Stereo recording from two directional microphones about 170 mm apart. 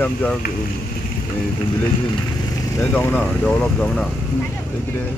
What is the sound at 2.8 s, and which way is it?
Speech, 10° left (ahead or behind).